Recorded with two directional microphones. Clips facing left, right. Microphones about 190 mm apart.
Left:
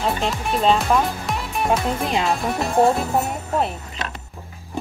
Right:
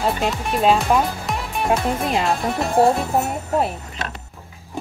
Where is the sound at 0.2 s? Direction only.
5° right (ahead or behind).